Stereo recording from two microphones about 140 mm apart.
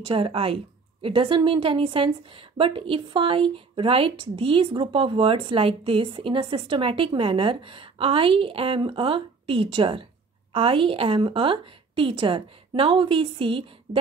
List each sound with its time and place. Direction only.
0.0 s a woman's voice: 40° right (ahead or behind)